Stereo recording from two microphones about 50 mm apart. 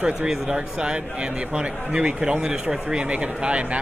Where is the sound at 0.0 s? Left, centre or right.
Centre.